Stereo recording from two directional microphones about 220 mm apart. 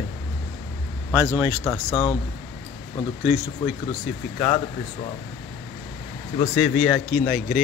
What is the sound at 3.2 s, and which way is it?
Speech, 5° right (ahead or behind).